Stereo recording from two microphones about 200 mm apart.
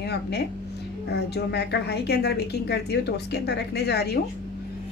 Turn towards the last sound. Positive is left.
turn(degrees=55)  # may be behind; listen again after turning